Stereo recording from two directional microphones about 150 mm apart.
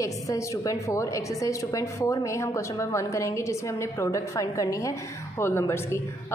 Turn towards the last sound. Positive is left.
turn(degrees=15)  # may be behind; listen again after turning